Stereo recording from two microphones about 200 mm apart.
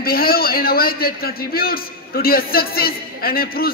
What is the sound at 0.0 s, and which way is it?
A man's voice, 50° left (ahead or behind).